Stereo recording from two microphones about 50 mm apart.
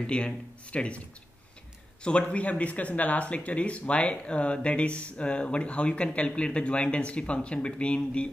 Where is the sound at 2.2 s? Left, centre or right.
Left.